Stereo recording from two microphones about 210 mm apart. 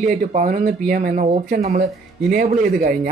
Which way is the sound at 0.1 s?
40° right (ahead or behind).